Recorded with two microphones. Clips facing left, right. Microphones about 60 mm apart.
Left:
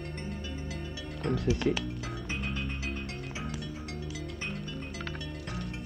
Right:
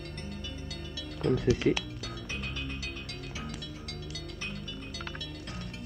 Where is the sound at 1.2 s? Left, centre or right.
Left.